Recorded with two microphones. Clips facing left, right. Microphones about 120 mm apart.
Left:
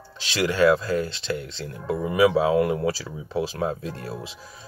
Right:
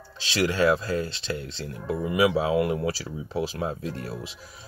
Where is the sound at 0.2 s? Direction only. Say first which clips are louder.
Left 3 dB; 35° right (ahead or behind).